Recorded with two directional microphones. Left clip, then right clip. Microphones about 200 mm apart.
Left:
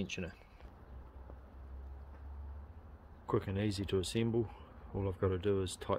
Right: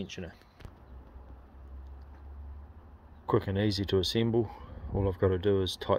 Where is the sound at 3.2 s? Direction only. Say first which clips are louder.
Right 7 dB; 40° right (ahead or behind).